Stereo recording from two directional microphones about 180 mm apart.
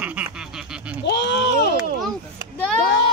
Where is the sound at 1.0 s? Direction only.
75° left (ahead or behind).